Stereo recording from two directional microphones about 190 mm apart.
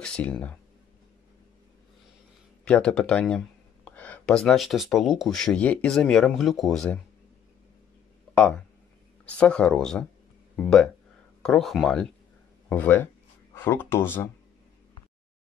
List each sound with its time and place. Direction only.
0.0 s speech: 5° left (ahead or behind)
2.6 s speech: 5° left (ahead or behind)
8.4 s speech: 5° left (ahead or behind)